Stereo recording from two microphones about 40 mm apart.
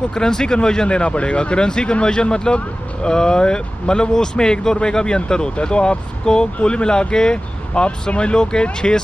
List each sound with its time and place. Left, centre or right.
0.1 s speech: centre